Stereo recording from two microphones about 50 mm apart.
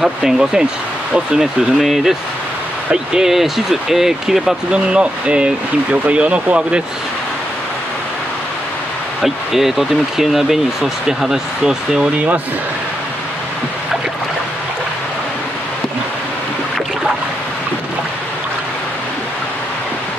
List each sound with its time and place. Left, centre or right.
0.2 s speech: centre
4.7 s speech: right
9.2 s speech: centre